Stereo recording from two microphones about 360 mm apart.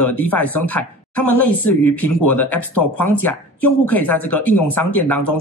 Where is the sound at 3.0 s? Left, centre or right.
Left.